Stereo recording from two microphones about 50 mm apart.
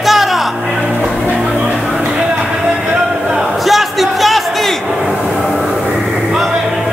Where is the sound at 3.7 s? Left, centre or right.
Centre.